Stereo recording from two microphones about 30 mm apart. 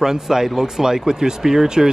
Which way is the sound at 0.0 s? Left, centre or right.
Centre.